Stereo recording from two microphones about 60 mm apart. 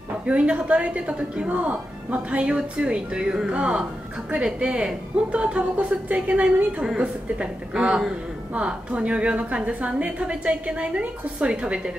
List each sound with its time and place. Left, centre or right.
0.3 s a woman's voice: centre